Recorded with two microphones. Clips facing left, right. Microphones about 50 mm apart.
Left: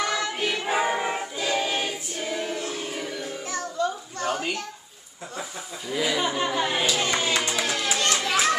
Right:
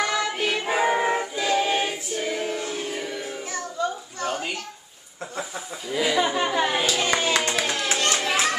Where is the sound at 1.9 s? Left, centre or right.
Centre.